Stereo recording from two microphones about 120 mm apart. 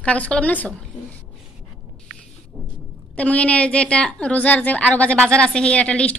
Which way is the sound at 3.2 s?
10° left (ahead or behind).